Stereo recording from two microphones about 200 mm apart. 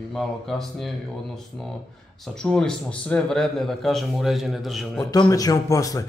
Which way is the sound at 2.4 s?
5° left (ahead or behind).